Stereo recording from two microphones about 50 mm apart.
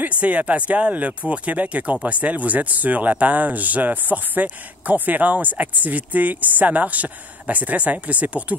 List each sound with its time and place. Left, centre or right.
0.2 s speech: right